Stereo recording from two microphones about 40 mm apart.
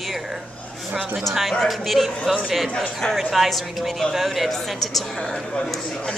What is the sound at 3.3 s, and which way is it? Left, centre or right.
A woman's voice, centre.